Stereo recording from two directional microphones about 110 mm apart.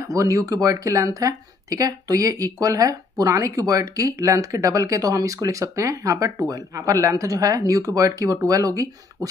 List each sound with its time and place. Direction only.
0.0 s speech: 30° right (ahead or behind)